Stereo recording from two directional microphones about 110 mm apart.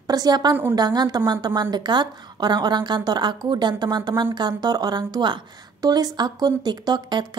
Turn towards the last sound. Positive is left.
turn(degrees=-40)  # may be behind; listen again after turning